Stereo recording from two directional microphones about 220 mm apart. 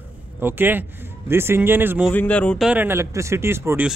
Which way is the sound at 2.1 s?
5° left (ahead or behind).